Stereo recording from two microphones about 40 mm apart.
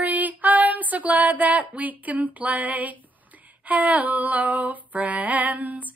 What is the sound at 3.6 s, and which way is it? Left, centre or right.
Female singing, right.